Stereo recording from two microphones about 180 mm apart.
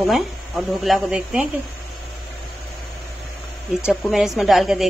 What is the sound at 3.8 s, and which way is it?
Speech, centre (ahead or behind).